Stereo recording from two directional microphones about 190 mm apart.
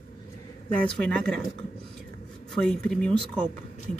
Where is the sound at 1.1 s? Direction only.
5° left (ahead or behind).